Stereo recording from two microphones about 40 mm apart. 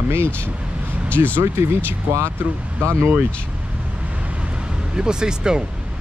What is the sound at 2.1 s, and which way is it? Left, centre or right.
Speech, right.